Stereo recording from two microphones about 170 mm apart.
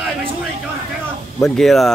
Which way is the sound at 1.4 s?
Centre (ahead or behind).